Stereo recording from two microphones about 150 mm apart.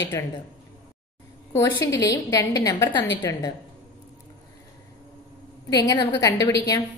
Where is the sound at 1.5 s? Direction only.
20° left (ahead or behind).